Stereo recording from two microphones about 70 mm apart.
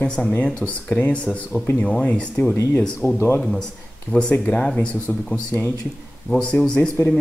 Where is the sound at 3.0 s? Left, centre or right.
Right.